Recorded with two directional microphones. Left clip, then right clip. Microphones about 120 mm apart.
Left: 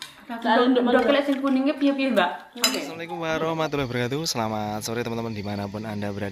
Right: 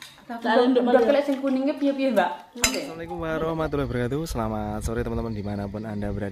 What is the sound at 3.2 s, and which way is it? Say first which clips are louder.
Speech: left 2 dB; 30° right (ahead or behind).